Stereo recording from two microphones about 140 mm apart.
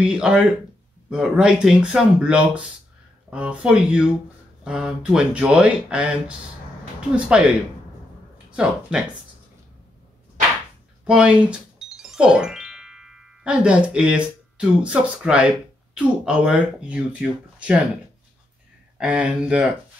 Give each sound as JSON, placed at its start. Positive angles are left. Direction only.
{"t": 0.0, "sound": "speech", "side_deg": -5}
{"t": 11.1, "sound": "speech", "side_deg": -5}
{"t": 18.9, "sound": "speech", "side_deg": -10}